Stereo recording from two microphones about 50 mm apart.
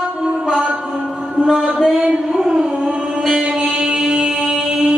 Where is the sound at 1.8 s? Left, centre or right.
Centre.